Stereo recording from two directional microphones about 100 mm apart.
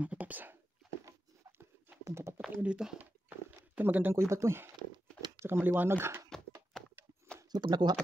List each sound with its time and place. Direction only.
0.0 s whispering: 15° right (ahead or behind)
2.0 s a sound: 25° right (ahead or behind)
2.6 s speech: 10° right (ahead or behind)
3.0 s a sound: 15° right (ahead or behind)
5.4 s speech: 25° right (ahead or behind)
7.5 s speech: 45° right (ahead or behind)